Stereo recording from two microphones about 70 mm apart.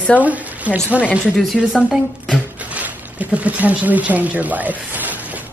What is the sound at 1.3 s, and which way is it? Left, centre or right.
Speech, centre.